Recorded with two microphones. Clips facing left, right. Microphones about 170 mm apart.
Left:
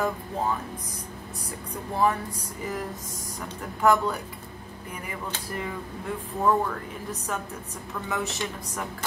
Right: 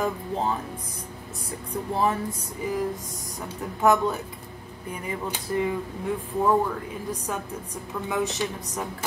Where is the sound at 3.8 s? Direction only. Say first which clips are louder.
Right 1 dB; 20° right (ahead or behind).